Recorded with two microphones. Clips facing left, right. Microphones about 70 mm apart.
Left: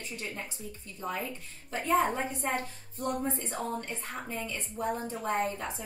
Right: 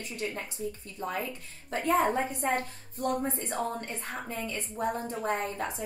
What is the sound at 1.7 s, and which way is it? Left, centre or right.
A woman's voice, right.